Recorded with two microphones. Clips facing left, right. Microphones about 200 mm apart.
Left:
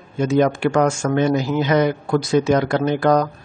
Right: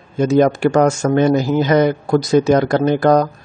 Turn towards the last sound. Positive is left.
turn(degrees=-40)  # may be behind; listen again after turning